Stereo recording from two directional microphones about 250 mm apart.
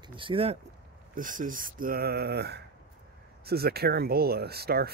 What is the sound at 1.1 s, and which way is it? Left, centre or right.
Speech, right.